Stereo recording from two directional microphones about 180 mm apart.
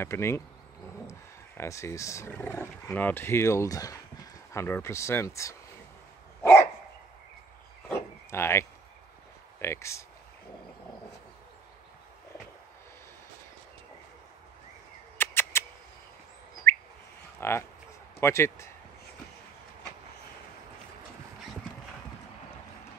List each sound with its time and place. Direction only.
0.0 s speech: 15° left (ahead or behind)
1.6 s speech: 15° left (ahead or behind)
7.9 s a sound: 15° left (ahead or behind)
9.6 s speech: 15° left (ahead or behind)
15.1 s a sound: 15° left (ahead or behind)
16.6 s bird: 10° left (ahead or behind)
17.4 s speech: 15° left (ahead or behind)